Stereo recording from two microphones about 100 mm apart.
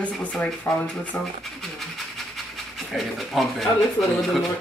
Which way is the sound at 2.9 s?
Centre (ahead or behind).